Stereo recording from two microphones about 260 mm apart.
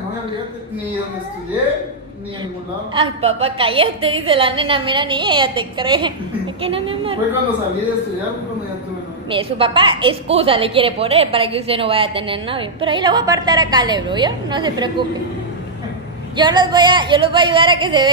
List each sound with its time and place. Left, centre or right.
2.9 s a woman's voice: right
9.3 s a woman's voice: centre
16.3 s a woman's voice: centre